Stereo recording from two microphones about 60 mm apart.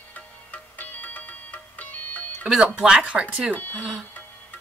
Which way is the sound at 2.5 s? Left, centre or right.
Centre.